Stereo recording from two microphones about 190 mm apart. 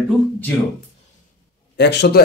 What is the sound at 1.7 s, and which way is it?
Speech, 65° left (ahead or behind).